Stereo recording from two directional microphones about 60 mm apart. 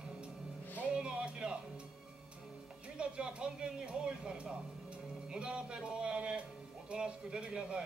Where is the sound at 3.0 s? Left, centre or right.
Centre.